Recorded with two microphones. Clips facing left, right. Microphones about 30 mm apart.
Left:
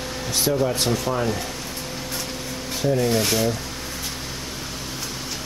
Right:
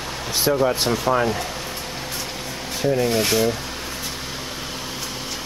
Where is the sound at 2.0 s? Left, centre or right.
Centre.